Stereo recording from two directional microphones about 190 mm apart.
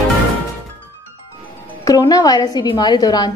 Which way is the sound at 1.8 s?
20° left (ahead or behind).